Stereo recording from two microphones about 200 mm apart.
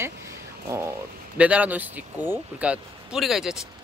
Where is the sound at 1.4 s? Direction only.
5° right (ahead or behind).